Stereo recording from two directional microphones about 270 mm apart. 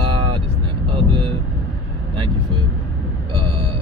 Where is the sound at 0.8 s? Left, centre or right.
Centre.